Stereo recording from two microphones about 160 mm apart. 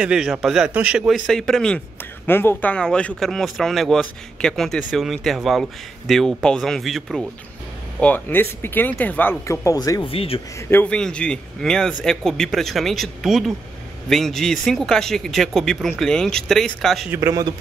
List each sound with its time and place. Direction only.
0.0 s speech: 5° right (ahead or behind)
2.2 s speech: 15° left (ahead or behind)
8.0 s speech: 10° left (ahead or behind)
10.1 s a man's voice: 35° left (ahead or behind)
10.7 s speech: 10° left (ahead or behind)
17.1 s a man's voice: 20° right (ahead or behind)